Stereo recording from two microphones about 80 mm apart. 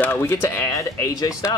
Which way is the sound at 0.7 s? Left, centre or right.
Left.